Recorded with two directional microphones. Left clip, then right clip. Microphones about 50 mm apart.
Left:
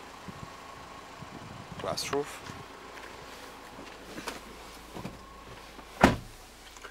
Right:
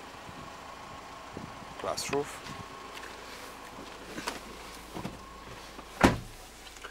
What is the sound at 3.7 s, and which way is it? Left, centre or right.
Vehicle, right.